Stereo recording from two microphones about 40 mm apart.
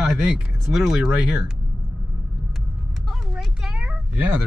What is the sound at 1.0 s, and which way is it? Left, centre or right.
Speech, centre.